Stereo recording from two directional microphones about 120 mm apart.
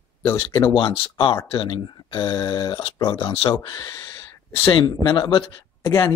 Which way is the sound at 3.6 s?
40° left (ahead or behind).